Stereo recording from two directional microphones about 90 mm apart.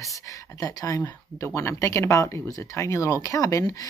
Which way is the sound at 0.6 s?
40° left (ahead or behind).